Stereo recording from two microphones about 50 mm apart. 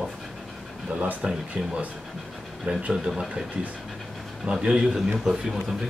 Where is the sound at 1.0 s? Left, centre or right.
Right.